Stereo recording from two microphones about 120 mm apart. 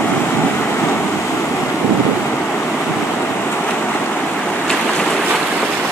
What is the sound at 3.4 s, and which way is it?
Waves, 15° left (ahead or behind).